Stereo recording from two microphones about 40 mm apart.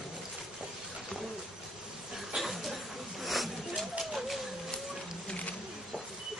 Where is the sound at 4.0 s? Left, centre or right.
Centre.